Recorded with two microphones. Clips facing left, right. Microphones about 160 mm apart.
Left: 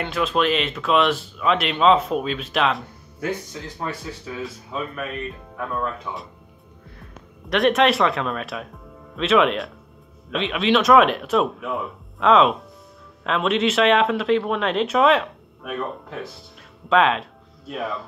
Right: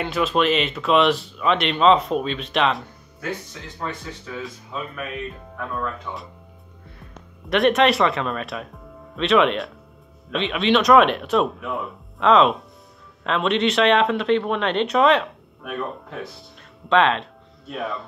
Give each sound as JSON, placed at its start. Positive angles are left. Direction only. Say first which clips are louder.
{"t": 0.0, "sound": "speech", "louder": "right 1 dB", "side_deg": 0}
{"t": 3.2, "sound": "speech", "louder": "left 3 dB", "side_deg": 15}
{"t": 7.4, "sound": "speech", "louder": "right 1 dB", "side_deg": 0}